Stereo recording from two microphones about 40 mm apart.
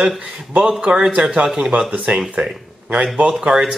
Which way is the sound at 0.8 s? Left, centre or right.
Centre.